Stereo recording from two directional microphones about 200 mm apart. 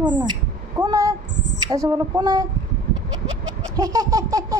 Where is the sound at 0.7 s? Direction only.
15° right (ahead or behind).